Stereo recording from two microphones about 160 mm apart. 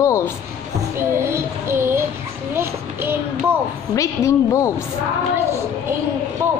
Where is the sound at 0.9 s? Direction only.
15° right (ahead or behind).